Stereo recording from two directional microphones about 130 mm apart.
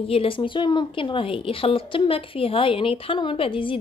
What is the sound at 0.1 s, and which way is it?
A woman's voice, 45° left (ahead or behind).